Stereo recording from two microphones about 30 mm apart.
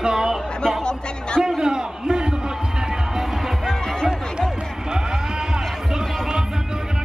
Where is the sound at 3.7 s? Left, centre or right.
Centre.